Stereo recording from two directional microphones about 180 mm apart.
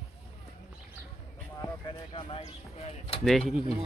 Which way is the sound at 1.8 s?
30° left (ahead or behind).